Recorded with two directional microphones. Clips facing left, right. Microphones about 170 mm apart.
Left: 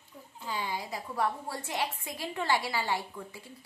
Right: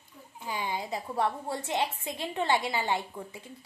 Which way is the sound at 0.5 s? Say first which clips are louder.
Right 2 dB; 20° right (ahead or behind).